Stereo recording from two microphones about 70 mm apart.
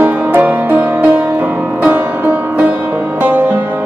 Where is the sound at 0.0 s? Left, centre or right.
Right.